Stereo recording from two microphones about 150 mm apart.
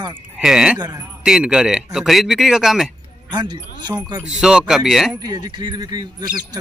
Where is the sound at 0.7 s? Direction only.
25° right (ahead or behind).